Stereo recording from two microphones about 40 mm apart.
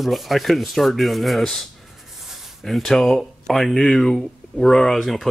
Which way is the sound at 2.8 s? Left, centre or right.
Centre.